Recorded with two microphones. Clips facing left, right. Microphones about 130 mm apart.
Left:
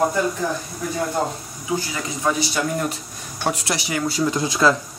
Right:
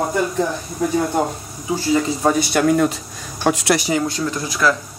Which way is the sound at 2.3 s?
60° right (ahead or behind).